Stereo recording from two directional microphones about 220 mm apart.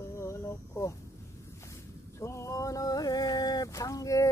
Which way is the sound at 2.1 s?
15° left (ahead or behind).